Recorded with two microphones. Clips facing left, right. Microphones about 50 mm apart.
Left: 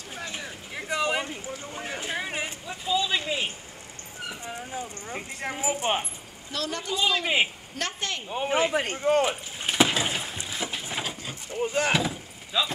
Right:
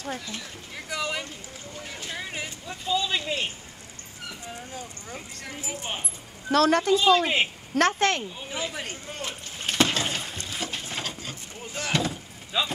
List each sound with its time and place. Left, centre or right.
0.3 s a sound: left
2.6 s a sound: centre
4.3 s dog: centre
5.1 s a woman's voice: left
5.8 s speech: left
6.5 s a woman's voice: right
8.3 s speech: left
9.6 s a sound: centre
11.6 s speech: left
11.9 s speech: centre
12.5 s speech: centre